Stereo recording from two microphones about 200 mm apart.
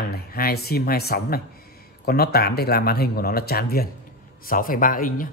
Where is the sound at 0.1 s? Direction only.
50° left (ahead or behind).